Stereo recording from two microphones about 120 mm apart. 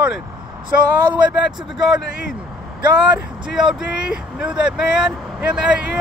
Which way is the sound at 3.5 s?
5° right (ahead or behind).